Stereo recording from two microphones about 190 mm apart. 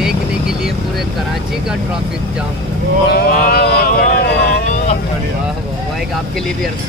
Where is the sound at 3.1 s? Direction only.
55° left (ahead or behind).